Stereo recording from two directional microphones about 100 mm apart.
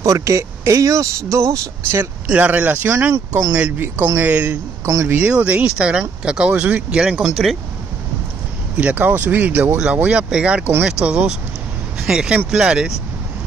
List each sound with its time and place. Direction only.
0.0 s speech: 30° right (ahead or behind)
2.2 s speech: 15° right (ahead or behind)
4.8 s speech: 30° right (ahead or behind)
5.1 s speech: 10° right (ahead or behind)
8.7 s speech: 15° right (ahead or behind)